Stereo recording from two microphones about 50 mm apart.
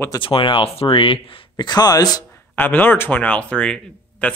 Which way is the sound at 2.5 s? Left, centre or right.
Left.